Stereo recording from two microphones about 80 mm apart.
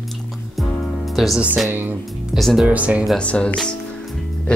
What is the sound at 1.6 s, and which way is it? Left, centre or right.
Speech, right.